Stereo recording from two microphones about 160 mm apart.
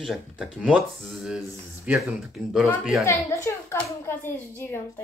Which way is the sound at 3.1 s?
20° left (ahead or behind).